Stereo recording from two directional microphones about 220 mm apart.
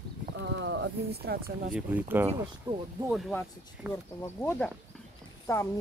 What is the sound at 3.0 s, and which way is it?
Speech, centre (ahead or behind).